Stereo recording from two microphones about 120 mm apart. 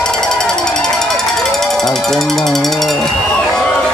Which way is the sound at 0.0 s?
5° left (ahead or behind).